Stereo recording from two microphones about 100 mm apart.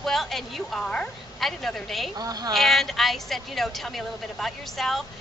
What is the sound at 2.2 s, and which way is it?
Speech, 40° right (ahead or behind).